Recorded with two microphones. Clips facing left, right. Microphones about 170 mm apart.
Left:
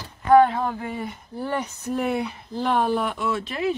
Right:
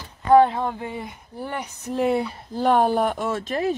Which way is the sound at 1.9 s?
30° right (ahead or behind).